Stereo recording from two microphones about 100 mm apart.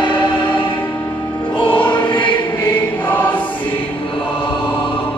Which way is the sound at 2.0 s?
55° left (ahead or behind).